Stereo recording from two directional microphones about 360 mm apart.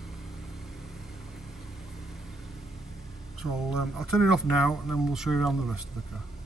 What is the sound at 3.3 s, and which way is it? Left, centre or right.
Speech, centre.